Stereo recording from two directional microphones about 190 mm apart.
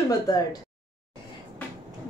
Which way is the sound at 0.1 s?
20° left (ahead or behind).